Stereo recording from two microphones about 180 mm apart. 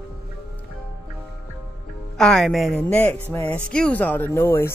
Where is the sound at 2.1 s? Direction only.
5° left (ahead or behind).